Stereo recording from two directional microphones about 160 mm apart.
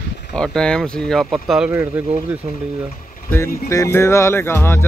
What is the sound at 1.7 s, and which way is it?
Speech, 10° right (ahead or behind).